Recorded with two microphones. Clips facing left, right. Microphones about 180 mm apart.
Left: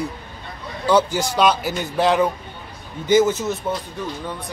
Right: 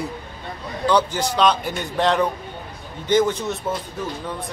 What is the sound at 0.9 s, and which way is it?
A man's voice, 10° left (ahead or behind).